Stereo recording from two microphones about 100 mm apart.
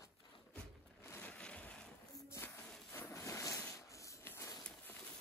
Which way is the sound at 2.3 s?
25° left (ahead or behind).